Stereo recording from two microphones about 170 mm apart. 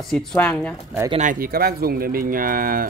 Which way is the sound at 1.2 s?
55° right (ahead or behind).